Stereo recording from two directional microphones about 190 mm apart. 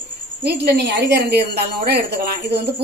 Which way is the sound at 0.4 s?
60° right (ahead or behind).